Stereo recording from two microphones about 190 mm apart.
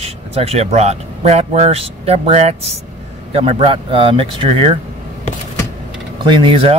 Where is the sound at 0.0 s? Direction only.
30° right (ahead or behind).